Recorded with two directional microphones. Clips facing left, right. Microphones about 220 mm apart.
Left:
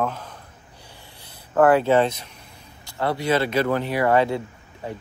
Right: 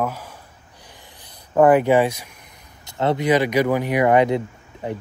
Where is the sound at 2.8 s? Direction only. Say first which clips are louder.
Right 4 dB; 20° right (ahead or behind).